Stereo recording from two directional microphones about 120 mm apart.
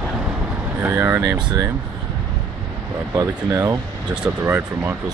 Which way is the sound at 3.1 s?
25° right (ahead or behind).